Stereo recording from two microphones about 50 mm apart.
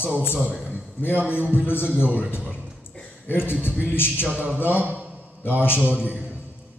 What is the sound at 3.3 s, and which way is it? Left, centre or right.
Speech, left.